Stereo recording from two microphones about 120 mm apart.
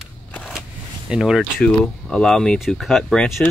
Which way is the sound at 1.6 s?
5° left (ahead or behind).